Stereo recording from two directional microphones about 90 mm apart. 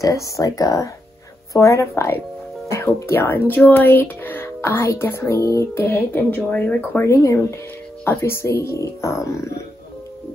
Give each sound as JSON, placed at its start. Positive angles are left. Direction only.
{"t": 0.0, "sound": "speech", "side_deg": 35}
{"t": 2.7, "sound": "music", "side_deg": 30}
{"t": 8.0, "sound": "speech", "side_deg": 25}